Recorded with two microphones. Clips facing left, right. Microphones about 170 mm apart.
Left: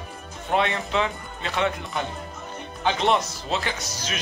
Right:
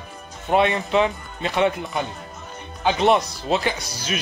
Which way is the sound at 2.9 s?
10° right (ahead or behind).